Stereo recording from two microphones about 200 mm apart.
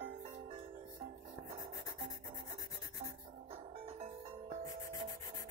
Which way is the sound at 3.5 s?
30° right (ahead or behind).